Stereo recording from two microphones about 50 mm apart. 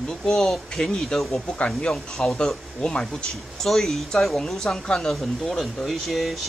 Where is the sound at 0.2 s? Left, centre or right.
Centre.